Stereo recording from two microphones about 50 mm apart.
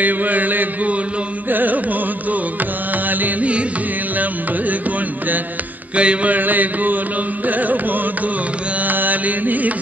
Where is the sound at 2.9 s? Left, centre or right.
Right.